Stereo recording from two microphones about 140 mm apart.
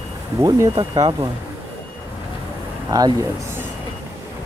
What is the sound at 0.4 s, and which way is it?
Speech, 25° right (ahead or behind).